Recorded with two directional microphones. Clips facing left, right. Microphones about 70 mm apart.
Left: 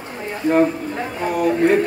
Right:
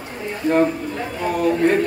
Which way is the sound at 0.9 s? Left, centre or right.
Centre.